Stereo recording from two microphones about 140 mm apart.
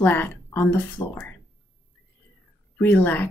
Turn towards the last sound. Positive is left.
turn(degrees=15)  # may be behind; listen again after turning